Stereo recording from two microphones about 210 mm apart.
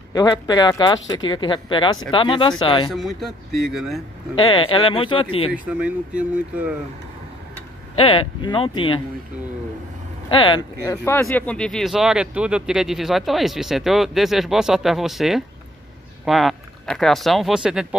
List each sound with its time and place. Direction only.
0.1 s speech: 15° left (ahead or behind)
2.9 s speech: centre (ahead or behind)
4.4 s speech: 25° left (ahead or behind)
5.5 s speech: 5° right (ahead or behind)
8.0 s speech: 25° left (ahead or behind)
10.3 s speech: 25° left (ahead or behind); by 17.8 s 5° right (ahead or behind)